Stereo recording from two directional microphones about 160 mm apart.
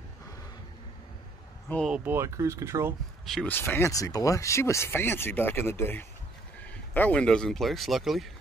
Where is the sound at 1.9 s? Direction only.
10° right (ahead or behind).